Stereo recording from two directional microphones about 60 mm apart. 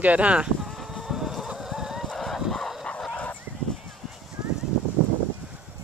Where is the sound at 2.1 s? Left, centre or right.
Centre.